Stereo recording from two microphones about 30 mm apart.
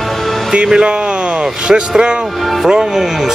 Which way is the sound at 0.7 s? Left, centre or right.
Right.